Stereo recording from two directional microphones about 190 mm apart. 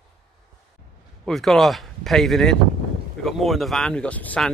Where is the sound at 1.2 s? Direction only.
Centre (ahead or behind).